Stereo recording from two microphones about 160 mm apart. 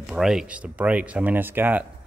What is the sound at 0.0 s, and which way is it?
Speech, 5° right (ahead or behind).